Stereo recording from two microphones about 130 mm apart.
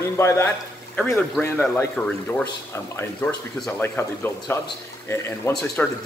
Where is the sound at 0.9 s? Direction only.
5° left (ahead or behind).